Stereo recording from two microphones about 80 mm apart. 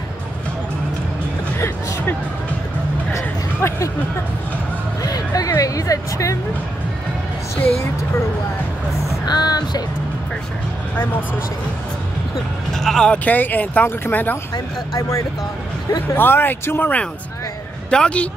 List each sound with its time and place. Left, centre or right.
3.2 s a sound: left
5.0 s music: left
9.3 s music: left
12.7 s speech: centre; by 14.4 s left
14.5 s speech: left
16.2 s speech: left
17.8 s speech: centre